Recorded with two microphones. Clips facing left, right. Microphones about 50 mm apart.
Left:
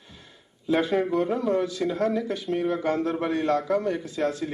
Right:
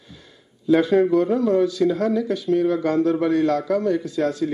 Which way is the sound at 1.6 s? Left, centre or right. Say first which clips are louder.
Right 6 dB; left.